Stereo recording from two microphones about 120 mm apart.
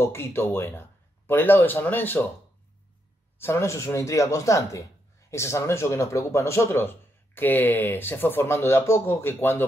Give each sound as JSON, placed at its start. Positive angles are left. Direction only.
{"t": 0.0, "sound": "speech", "side_deg": 20}
{"t": 3.3, "sound": "speech", "side_deg": 20}